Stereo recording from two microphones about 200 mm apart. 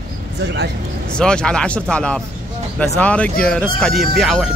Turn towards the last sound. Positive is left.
turn(degrees=0)  # may be behind; listen again after turning